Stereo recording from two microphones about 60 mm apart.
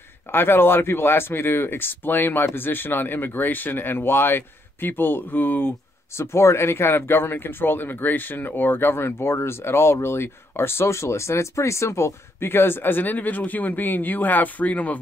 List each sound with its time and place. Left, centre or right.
0.3 s a man's voice: left
6.1 s a man's voice: left